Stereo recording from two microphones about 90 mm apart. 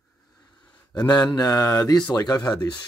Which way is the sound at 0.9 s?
50° left (ahead or behind).